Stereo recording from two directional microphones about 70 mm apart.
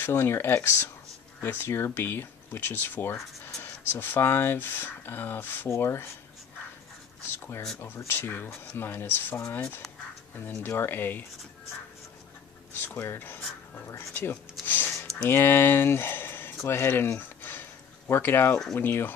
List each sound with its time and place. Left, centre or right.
0.0 s speech: left
7.2 s speech: left
10.7 s speech: left
12.7 s speech: left
14.1 s speech: left
14.7 s a sound: left
15.2 s speech: left
17.2 s a sound: left
18.8 s speech: left